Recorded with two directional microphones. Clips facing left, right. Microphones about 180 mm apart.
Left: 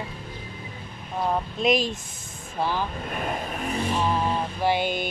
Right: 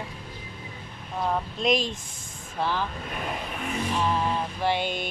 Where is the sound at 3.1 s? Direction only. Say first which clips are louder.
Left 4 dB; 50° left (ahead or behind).